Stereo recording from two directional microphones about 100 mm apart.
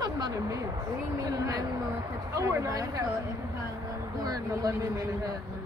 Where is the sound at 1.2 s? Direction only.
35° right (ahead or behind).